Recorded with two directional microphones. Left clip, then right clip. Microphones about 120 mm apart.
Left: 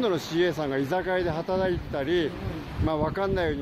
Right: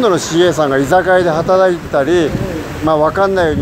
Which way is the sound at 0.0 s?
15° left (ahead or behind).